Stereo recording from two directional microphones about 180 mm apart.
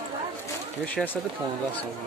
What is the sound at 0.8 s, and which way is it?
Speech, 10° left (ahead or behind).